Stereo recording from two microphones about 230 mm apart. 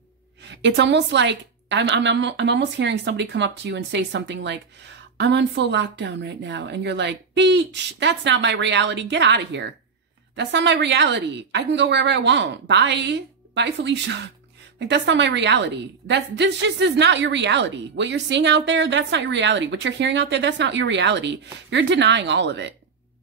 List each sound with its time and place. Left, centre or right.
0.4 s a woman's voice: right